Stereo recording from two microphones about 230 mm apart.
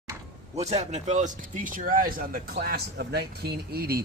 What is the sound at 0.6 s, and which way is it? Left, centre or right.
Speech, right.